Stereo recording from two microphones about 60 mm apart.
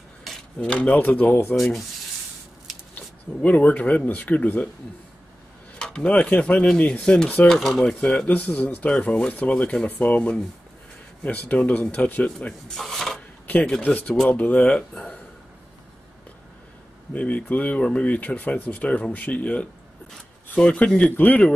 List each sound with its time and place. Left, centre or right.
0.6 s speech: centre
0.9 s speech: left
1.6 s rub: centre
3.4 s speech: left
5.8 s a sound: centre
6.0 s speech: left
8.3 s speech: left
8.8 s speech: centre
12.4 s rub: centre
13.8 s speech: left
17.1 s speech: left
21.1 s speech: left